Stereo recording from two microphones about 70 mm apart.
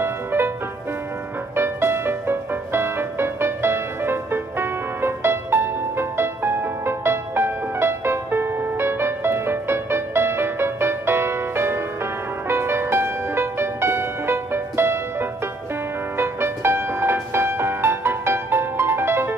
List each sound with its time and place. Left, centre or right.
0.0 s music: right
1.5 s music: right